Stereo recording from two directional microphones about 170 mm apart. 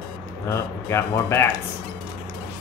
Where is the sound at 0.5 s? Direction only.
15° left (ahead or behind).